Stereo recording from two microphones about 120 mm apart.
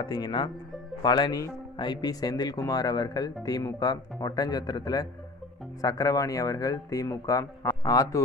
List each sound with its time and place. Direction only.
0.0 s speech: 40° left (ahead or behind)